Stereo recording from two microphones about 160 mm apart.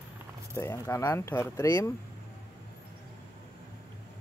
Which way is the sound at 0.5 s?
20° left (ahead or behind).